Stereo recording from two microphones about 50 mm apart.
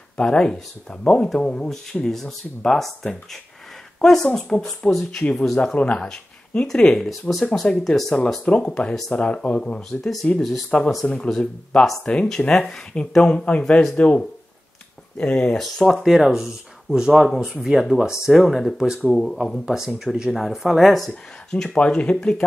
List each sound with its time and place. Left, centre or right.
0.2 s speech: centre
5.8 s speech: left
7.1 s speech: centre
8.5 s speech: centre
9.8 s speech: centre
10.7 s speech: left
11.2 s speech: centre
12.0 s speech: left
15.5 s speech: centre
18.3 s speech: centre
19.6 s speech: centre
21.1 s speech: centre